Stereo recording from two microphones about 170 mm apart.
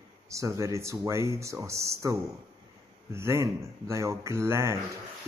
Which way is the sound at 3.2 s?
15° right (ahead or behind).